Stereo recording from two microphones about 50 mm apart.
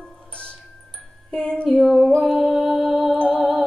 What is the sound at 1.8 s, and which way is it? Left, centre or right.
Music, centre.